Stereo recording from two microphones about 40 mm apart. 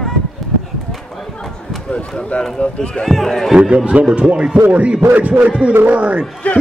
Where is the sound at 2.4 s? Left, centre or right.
Left.